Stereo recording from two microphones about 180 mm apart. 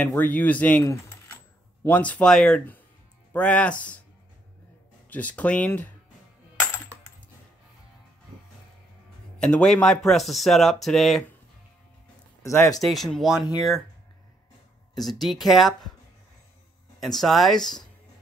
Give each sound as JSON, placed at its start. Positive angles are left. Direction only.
{"t": 0.0, "sound": "speech", "side_deg": 10}
{"t": 5.1, "sound": "speech", "side_deg": 10}
{"t": 9.4, "sound": "speech", "side_deg": 5}
{"t": 12.4, "sound": "speech", "side_deg": 15}
{"t": 12.8, "sound": "speech", "side_deg": 0}
{"t": 15.0, "sound": "speech", "side_deg": 0}
{"t": 17.0, "sound": "speech", "side_deg": 0}